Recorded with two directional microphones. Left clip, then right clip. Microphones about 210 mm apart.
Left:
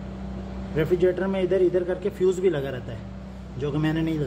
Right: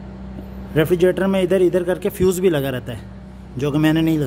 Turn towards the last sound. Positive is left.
turn(degrees=-45)  # may be behind; listen again after turning